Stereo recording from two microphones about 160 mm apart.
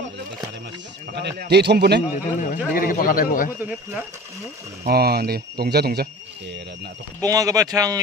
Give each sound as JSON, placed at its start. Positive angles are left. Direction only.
{"t": 1.1, "sound": "a man's voice", "side_deg": -90}
{"t": 2.4, "sound": "speech", "side_deg": 60}
{"t": 4.8, "sound": "speech", "side_deg": -75}
{"t": 7.2, "sound": "speech", "side_deg": -20}